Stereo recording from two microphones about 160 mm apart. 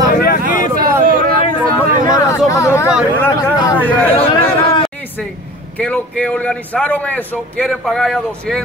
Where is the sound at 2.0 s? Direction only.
20° left (ahead or behind).